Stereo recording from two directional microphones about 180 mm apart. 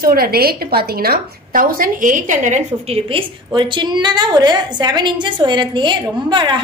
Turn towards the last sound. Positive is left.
turn(degrees=-25)  # may be behind; listen again after turning